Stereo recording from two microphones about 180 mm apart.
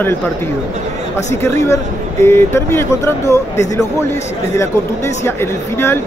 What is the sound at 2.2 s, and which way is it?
Speech, 15° left (ahead or behind).